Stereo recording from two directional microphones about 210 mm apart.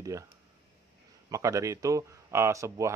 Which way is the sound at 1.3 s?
15° right (ahead or behind).